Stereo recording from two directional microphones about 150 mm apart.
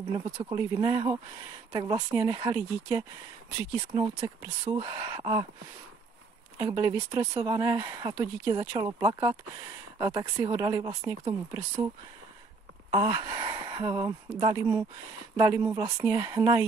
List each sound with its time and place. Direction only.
0.1 s speech: 30° right (ahead or behind)
6.6 s speech: 25° right (ahead or behind)
12.9 s speech: 35° right (ahead or behind)